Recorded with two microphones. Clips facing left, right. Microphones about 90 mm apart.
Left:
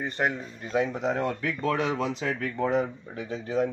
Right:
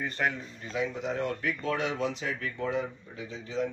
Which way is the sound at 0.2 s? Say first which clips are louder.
Left 3 dB; 25° left (ahead or behind).